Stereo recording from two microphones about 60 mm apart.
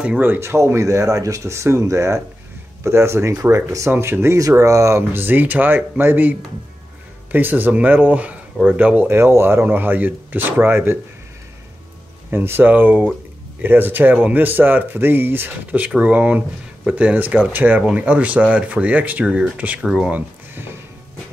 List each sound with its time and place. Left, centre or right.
0.4 s speech: right
4.0 s speech: right
4.6 s speech: right
5.1 s speech: right
7.3 s speech: right
9.0 s speech: right
9.7 s speech: right
12.3 s speech: right
16.0 s speech: right
17.7 s speech: right
19.8 s speech: centre
20.1 s speech: right